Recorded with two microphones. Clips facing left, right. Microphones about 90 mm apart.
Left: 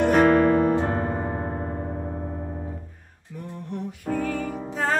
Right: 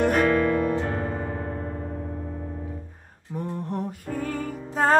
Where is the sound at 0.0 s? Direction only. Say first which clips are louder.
Left 3 dB; 45° left (ahead or behind).